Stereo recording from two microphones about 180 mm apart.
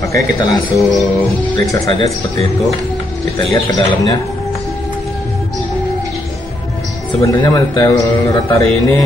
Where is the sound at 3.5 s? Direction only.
20° left (ahead or behind).